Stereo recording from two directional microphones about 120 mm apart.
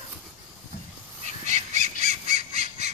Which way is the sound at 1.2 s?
75° right (ahead or behind).